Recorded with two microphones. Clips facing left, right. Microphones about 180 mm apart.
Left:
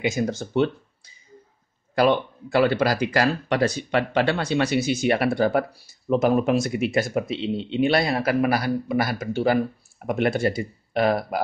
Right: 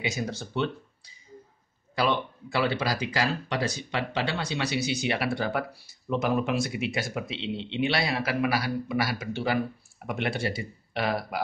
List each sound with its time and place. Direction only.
0.0 s speech: 50° left (ahead or behind)